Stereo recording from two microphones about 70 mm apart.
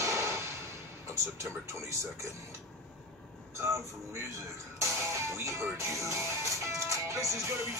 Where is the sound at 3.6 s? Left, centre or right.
Right.